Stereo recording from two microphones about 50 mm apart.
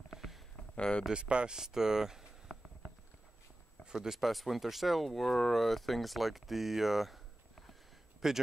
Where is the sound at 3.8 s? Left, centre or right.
Centre.